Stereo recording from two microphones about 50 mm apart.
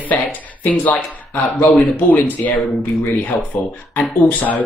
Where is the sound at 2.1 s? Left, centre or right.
Left.